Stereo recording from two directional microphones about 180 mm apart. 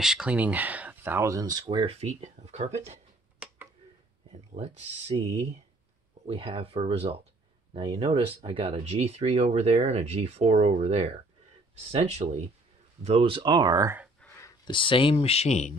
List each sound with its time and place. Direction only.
0.0 s speech: 5° right (ahead or behind); by 3.0 s 40° right (ahead or behind)
4.3 s speech: 35° right (ahead or behind); by 14.0 s 15° right (ahead or behind)
14.4 s speech: 25° left (ahead or behind)